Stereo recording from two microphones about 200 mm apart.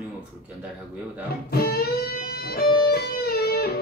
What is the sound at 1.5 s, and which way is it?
Music, 50° left (ahead or behind).